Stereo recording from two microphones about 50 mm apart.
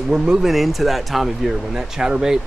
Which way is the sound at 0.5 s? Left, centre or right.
Centre.